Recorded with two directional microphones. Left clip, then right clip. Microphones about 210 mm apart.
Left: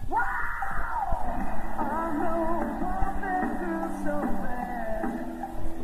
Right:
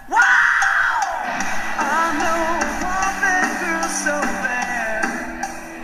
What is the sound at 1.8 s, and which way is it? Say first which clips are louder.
Music: right 10 dB; 10° right (ahead or behind).